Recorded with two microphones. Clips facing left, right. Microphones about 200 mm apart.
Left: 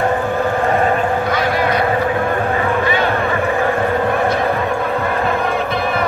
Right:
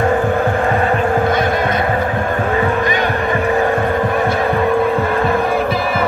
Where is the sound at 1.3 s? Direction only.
50° right (ahead or behind).